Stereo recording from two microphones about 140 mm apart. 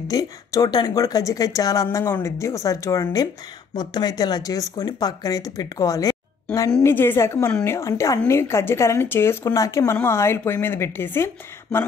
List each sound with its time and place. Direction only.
0.1 s speech: 25° left (ahead or behind)